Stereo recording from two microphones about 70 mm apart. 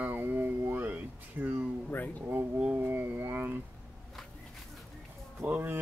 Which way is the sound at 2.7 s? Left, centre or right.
Right.